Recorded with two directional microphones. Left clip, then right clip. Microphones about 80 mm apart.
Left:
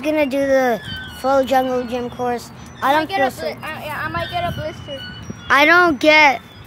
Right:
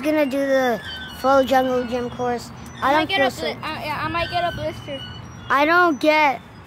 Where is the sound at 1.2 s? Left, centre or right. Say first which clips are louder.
Left 1 dB; centre.